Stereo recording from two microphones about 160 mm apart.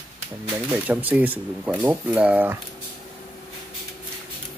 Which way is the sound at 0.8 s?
10° right (ahead or behind).